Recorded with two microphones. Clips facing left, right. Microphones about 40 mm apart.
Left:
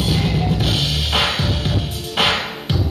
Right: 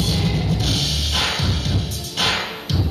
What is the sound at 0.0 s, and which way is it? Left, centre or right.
Music, left.